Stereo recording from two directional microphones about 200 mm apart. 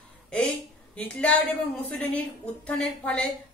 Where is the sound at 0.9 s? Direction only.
5° left (ahead or behind).